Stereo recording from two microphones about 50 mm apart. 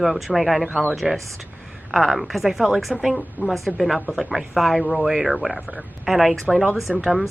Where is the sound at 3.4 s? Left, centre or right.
Right.